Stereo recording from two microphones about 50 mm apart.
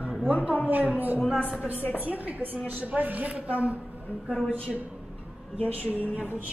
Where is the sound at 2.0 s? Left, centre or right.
Right.